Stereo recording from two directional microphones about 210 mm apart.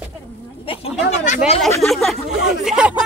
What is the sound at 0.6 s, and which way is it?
Speech, 25° left (ahead or behind).